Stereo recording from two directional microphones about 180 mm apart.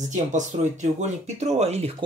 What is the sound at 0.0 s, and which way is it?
Speech, 45° right (ahead or behind).